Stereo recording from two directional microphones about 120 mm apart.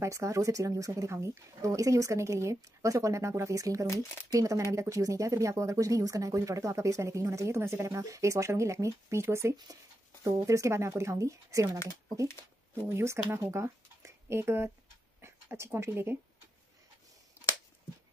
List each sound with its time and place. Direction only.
0.0 s speech: 25° right (ahead or behind)
12.8 s speech: 20° right (ahead or behind)